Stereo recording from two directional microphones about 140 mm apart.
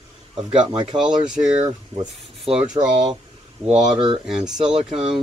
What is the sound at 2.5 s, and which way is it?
Speech, 40° right (ahead or behind).